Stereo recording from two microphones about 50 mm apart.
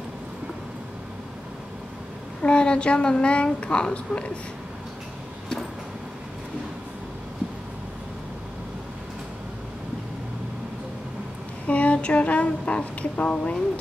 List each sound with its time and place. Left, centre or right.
2.4 s a woman's voice: left
11.6 s a woman's voice: left